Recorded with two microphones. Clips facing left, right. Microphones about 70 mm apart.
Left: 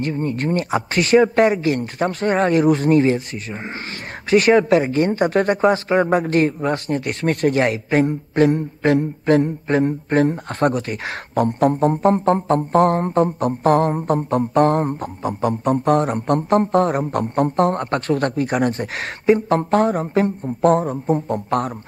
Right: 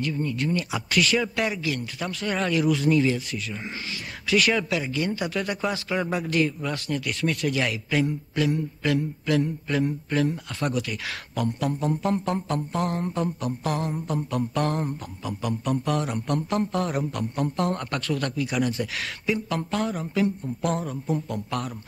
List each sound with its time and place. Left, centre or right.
0.0 s speech: left